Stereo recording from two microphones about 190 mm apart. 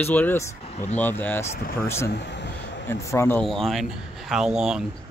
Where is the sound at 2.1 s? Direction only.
65° left (ahead or behind).